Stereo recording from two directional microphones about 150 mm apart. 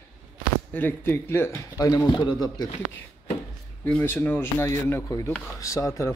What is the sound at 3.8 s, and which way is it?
Speech, 10° left (ahead or behind).